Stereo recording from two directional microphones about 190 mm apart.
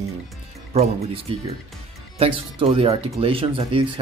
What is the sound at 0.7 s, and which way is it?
Speech, 35° right (ahead or behind).